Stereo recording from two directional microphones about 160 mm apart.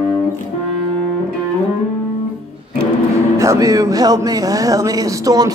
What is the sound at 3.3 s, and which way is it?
Speech, 20° right (ahead or behind).